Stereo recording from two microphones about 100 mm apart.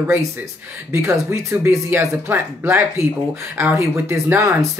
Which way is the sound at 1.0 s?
30° right (ahead or behind).